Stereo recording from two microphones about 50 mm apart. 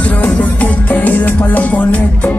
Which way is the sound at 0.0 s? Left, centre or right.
Left.